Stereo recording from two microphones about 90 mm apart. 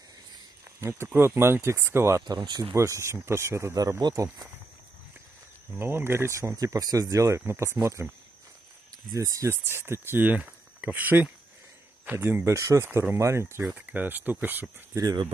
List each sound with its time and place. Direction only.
0.7 s speech: 30° right (ahead or behind)
2.2 s speech: 55° right (ahead or behind)
2.7 s speech: 30° right (ahead or behind)
5.8 s speech: 25° right (ahead or behind)
6.5 s speech: 40° right (ahead or behind)
9.1 s speech: 35° right (ahead or behind)
13.7 s speech: 20° right (ahead or behind)
15.0 s speech: 45° right (ahead or behind)